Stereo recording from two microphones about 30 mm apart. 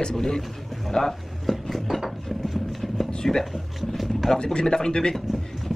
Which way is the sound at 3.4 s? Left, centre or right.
Centre.